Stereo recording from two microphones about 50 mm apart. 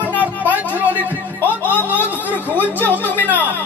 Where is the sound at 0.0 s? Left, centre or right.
Left.